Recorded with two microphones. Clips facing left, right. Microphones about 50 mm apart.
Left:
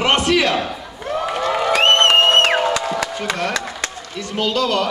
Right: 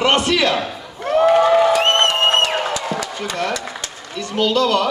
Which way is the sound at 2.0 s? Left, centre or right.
Left.